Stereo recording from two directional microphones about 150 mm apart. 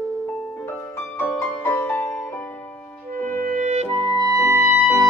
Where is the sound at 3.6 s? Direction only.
50° right (ahead or behind).